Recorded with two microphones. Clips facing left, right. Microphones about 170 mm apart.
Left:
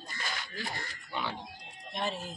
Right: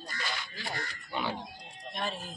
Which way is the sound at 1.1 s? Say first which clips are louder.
Right 2 dB; 5° right (ahead or behind).